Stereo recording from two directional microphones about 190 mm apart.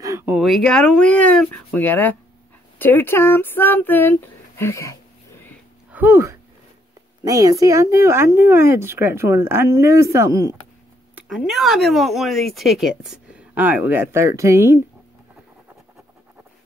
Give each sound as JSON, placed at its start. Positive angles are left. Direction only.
{"t": 0.0, "sound": "a sound", "side_deg": -15}
{"t": 0.4, "sound": "speech", "side_deg": 0}
{"t": 5.9, "sound": "speech", "side_deg": -10}
{"t": 11.1, "sound": "speech", "side_deg": -5}